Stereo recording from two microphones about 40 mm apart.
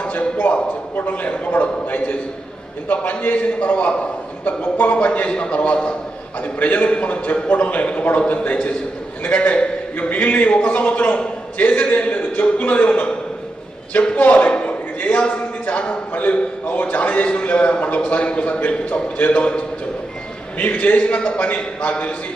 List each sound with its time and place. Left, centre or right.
0.0 s a sound: left
0.9 s a sound: left
2.9 s a man's voice: left
4.5 s a man's voice: left
9.2 s a man's voice: left
14.1 s a man's voice: left
14.6 s a sound: left
16.1 s a man's voice: left
20.8 s a man's voice: left